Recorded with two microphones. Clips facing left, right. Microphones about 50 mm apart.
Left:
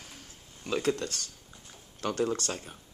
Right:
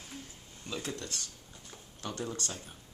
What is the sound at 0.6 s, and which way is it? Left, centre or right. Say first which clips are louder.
Speech: left 10 dB; left.